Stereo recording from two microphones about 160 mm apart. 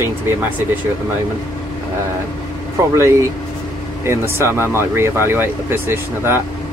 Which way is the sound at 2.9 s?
20° right (ahead or behind).